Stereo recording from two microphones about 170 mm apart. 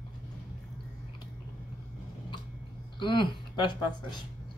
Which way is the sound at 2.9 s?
30° left (ahead or behind).